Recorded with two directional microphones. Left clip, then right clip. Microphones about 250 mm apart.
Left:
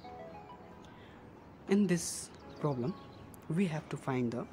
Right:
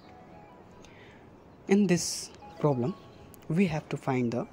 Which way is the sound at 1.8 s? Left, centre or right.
Centre.